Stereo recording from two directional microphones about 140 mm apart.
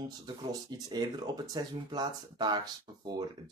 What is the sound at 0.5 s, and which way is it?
Speech, 25° right (ahead or behind).